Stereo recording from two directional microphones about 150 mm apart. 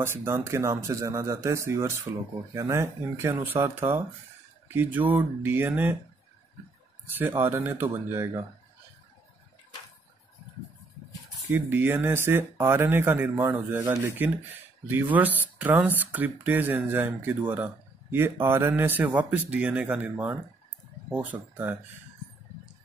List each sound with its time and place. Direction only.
0.0 s speech: 15° right (ahead or behind)
7.1 s speech: 15° right (ahead or behind)
11.5 s speech: 15° right (ahead or behind)